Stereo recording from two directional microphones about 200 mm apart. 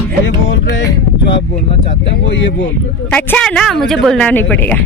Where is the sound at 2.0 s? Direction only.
65° left (ahead or behind).